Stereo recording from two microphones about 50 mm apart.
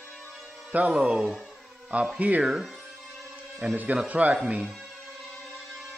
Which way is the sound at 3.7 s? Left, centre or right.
Right.